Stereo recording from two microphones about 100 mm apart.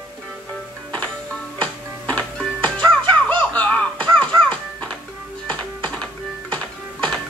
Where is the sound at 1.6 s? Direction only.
10° left (ahead or behind).